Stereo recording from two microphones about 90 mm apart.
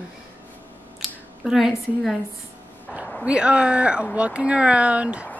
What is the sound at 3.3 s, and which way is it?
Speech, 10° right (ahead or behind).